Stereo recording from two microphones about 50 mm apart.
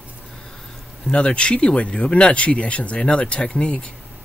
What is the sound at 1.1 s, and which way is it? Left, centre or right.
Speech, left.